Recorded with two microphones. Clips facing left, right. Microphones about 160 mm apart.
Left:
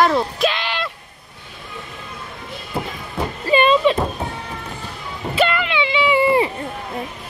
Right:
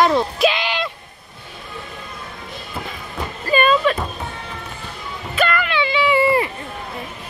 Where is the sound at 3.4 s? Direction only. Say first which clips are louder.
Left 2 dB; 25° left (ahead or behind).